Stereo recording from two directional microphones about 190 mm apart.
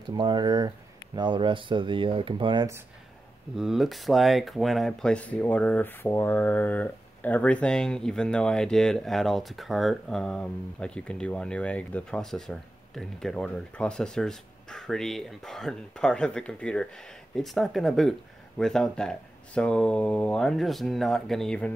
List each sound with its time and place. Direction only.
0.0 s speech: 25° right (ahead or behind)
3.5 s speech: centre (ahead or behind)